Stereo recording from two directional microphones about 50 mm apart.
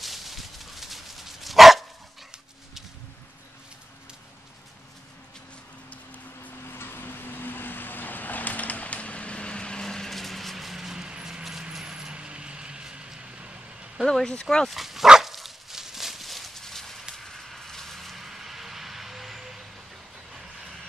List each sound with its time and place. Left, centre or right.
0.0 s dog: centre
6.7 s vehicle: left; by 14.0 s right
14.0 s speech: centre
14.7 s speech: centre
15.0 s dog: centre
17.1 s a sound: centre